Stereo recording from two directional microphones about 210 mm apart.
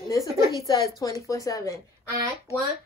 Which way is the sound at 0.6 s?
15° left (ahead or behind).